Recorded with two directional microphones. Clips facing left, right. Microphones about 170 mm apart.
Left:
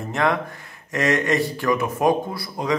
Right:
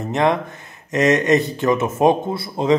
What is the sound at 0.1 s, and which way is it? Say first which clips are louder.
A man's voice: right 4 dB; 20° right (ahead or behind).